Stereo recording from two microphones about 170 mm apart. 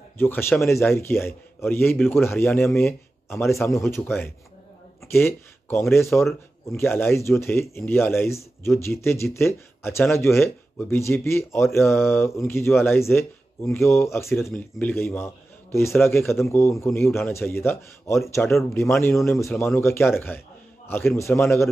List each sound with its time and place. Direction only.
0.2 s speech: 15° left (ahead or behind)
19.3 s speech: centre (ahead or behind)
19.6 s speech: 10° left (ahead or behind)